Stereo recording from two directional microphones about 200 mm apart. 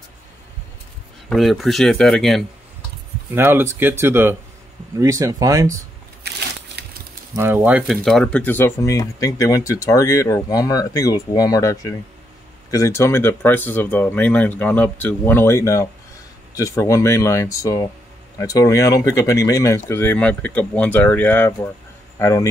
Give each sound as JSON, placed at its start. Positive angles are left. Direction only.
{"t": 1.3, "sound": "speech", "side_deg": 0}
{"t": 3.3, "sound": "speech", "side_deg": -10}
{"t": 6.2, "sound": "a sound", "side_deg": -55}
{"t": 7.3, "sound": "speech", "side_deg": -10}